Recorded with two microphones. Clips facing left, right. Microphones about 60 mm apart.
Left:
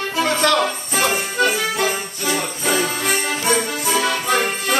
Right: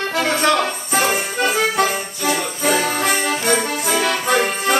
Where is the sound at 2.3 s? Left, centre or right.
Right.